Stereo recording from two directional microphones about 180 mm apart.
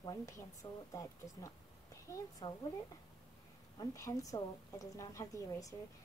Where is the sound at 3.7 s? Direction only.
20° left (ahead or behind).